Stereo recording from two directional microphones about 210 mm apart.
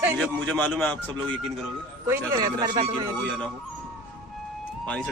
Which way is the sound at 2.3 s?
20° right (ahead or behind).